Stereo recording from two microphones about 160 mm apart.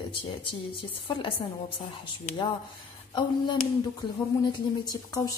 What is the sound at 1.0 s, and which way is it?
Speech, 30° left (ahead or behind).